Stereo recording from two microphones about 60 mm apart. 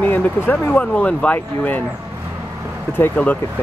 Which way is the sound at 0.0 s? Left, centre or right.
Left.